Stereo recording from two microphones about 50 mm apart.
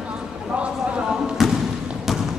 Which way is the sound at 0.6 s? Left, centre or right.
Centre.